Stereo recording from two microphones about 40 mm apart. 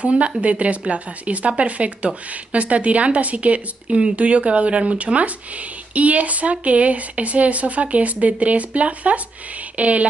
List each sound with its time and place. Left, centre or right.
0.0 s speech: right